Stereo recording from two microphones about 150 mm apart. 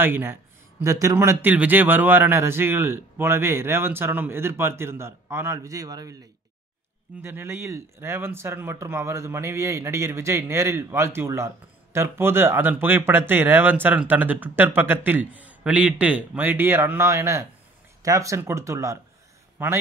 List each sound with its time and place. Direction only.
0.0 s speech: 15° right (ahead or behind)